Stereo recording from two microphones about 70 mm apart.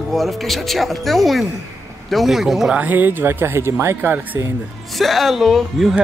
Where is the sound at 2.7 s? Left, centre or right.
Right.